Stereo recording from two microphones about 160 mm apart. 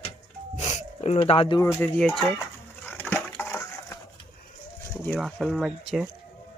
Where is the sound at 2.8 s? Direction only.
10° left (ahead or behind).